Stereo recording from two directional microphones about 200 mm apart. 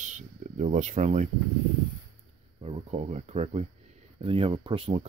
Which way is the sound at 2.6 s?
30° right (ahead or behind).